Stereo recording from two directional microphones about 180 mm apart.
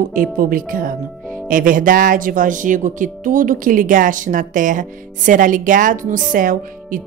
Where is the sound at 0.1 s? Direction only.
50° right (ahead or behind).